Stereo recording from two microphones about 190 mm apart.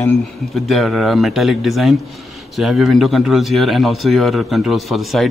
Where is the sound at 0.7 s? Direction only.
Centre (ahead or behind).